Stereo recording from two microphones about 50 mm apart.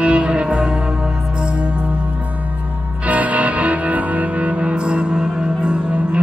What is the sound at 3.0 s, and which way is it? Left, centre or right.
Music, right.